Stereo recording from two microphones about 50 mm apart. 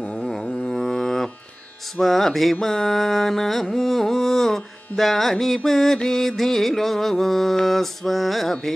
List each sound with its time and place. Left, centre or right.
0.0 s music: left
0.7 s mantra: centre
2.0 s music: centre
2.6 s carnatic music: centre
6.0 s music: centre